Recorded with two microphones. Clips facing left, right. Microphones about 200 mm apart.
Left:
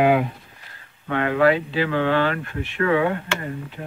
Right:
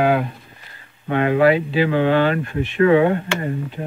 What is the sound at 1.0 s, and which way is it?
Speech, 15° right (ahead or behind).